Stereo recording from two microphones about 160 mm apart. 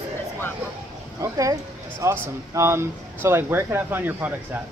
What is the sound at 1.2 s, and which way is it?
Speech, 20° right (ahead or behind).